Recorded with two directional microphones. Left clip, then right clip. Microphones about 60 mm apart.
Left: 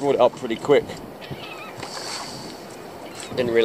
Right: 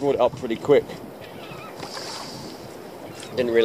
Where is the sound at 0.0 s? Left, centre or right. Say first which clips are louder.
Left 2 dB; centre.